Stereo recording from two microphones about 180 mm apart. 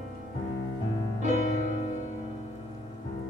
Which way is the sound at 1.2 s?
40° right (ahead or behind).